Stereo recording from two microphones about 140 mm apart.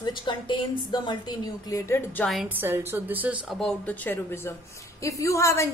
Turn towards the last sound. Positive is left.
turn(degrees=20)  # may be behind; listen again after turning